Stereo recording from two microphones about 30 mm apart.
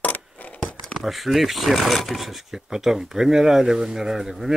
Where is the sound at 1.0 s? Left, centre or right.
Centre.